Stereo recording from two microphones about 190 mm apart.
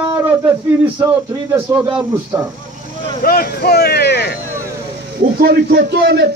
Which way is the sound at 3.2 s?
50° left (ahead or behind).